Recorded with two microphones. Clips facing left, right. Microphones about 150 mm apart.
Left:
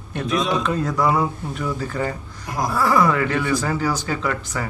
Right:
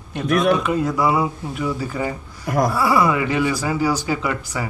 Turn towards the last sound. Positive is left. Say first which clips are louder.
# right 1 dB
turn(degrees=-10)  # may be behind; listen again after turning